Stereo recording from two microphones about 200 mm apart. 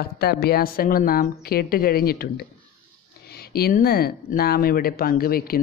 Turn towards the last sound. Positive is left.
turn(degrees=50)  # may be behind; listen again after turning